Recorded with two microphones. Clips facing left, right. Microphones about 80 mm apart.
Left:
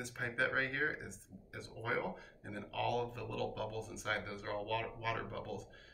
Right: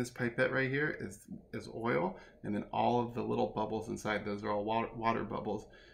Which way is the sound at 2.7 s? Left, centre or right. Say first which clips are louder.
Right 5 dB; right.